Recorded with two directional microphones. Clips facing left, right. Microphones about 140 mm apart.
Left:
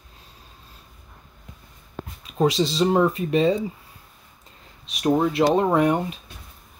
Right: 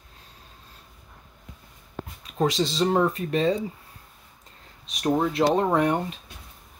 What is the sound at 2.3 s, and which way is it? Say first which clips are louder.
Speech: left 3 dB; 5° left (ahead or behind).